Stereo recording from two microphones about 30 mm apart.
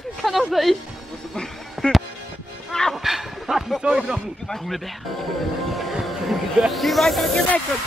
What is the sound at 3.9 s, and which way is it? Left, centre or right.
Speech, centre.